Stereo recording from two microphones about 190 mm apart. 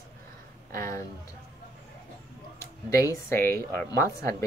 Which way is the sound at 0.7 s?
15° left (ahead or behind).